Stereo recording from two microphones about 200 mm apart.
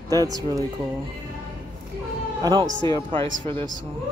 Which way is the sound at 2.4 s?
20° right (ahead or behind).